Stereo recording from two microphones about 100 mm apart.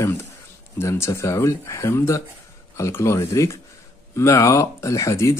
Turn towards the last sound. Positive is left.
turn(degrees=30)  # may be behind; listen again after turning